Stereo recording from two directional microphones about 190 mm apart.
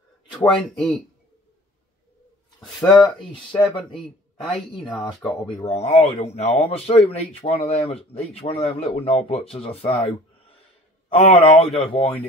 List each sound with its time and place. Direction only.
0.3 s speech: 5° left (ahead or behind)
2.6 s speech: centre (ahead or behind)
4.9 s speech: centre (ahead or behind)
5.7 s speech: 35° left (ahead or behind)